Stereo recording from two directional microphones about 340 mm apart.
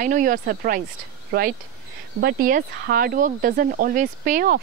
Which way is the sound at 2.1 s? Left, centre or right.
Right.